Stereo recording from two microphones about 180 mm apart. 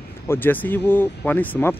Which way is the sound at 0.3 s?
10° left (ahead or behind).